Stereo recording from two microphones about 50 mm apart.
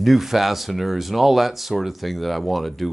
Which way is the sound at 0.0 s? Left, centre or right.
Centre.